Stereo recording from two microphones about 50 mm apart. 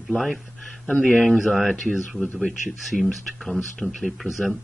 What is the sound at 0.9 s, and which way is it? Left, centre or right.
Speech, left.